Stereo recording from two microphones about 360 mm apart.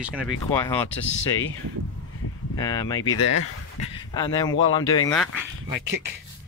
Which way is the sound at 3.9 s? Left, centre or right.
Centre.